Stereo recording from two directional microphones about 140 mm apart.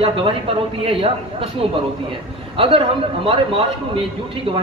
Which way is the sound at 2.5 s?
40° right (ahead or behind).